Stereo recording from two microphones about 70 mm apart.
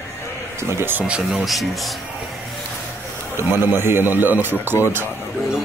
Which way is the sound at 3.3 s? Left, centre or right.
Right.